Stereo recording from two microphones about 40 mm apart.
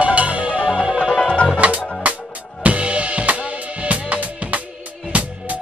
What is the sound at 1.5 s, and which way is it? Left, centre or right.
Music, right.